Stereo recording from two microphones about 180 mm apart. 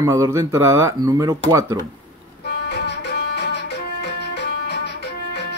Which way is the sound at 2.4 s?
65° left (ahead or behind).